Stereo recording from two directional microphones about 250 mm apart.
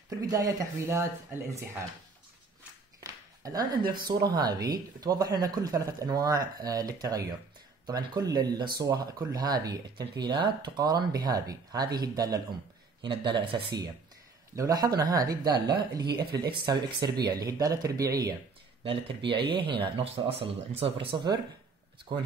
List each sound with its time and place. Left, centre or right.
0.3 s speech: centre
3.0 s a sound: centre
3.9 s speech: centre